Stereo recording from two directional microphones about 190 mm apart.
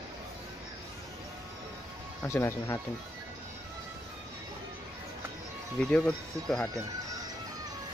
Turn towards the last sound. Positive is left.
turn(degrees=5)  # may be behind; listen again after turning